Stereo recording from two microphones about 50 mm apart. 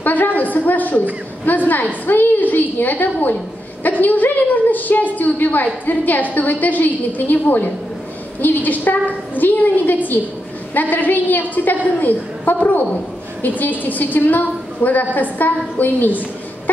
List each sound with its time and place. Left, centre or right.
0.0 s a woman's voice: left